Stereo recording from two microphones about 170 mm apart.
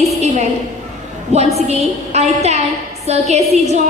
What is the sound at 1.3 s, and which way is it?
A woman's voice, 40° right (ahead or behind).